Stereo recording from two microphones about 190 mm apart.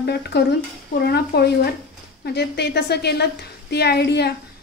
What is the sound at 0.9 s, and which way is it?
Speech, 45° left (ahead or behind).